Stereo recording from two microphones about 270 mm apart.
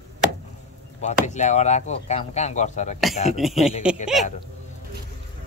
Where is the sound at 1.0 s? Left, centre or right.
Left.